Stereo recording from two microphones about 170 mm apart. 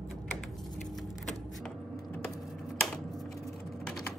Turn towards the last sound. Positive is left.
turn(degrees=0)  # may be behind; listen again after turning